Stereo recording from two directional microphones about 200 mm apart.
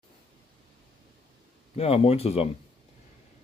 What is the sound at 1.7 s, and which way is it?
Speech, 30° left (ahead or behind).